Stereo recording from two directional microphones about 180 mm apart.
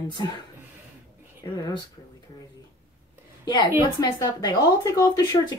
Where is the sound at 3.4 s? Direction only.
25° left (ahead or behind).